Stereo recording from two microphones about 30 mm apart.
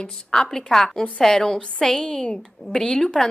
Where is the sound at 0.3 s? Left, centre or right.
Left.